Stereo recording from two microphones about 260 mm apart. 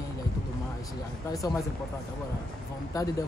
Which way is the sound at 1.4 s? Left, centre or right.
Centre.